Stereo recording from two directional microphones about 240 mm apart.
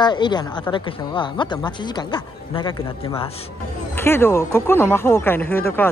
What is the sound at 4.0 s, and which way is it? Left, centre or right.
Speech, centre.